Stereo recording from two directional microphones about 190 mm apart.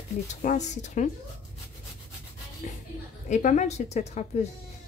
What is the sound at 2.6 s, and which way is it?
Music, 45° left (ahead or behind).